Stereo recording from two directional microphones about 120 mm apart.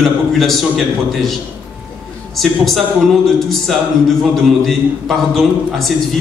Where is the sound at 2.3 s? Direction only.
Centre (ahead or behind).